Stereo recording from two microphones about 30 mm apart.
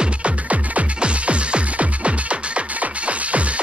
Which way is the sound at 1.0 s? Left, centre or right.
Right.